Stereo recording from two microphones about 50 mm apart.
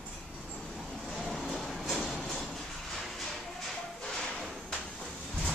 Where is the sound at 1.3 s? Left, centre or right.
Centre.